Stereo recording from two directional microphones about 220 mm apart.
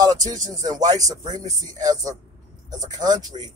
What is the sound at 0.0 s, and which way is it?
Speech, 15° right (ahead or behind).